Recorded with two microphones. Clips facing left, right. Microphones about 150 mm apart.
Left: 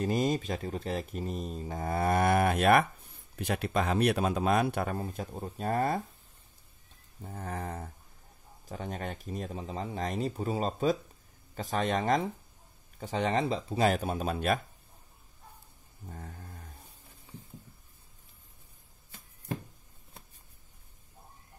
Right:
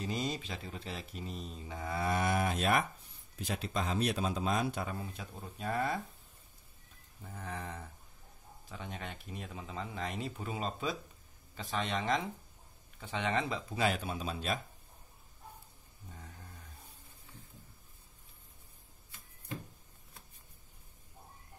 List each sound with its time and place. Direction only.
0.0 s speech: 50° left (ahead or behind)
4.9 s speech: 45° left (ahead or behind)
7.2 s speech: 40° left (ahead or behind); by 14.6 s 55° left (ahead or behind)
16.1 s a sound: 50° left (ahead or behind)